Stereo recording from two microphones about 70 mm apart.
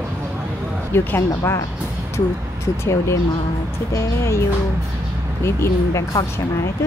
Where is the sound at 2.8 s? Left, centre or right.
Left.